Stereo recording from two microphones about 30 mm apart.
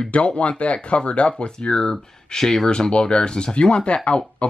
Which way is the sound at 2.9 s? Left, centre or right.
Left.